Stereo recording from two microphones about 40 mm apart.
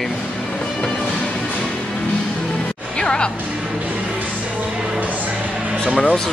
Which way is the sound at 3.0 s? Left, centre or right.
Left.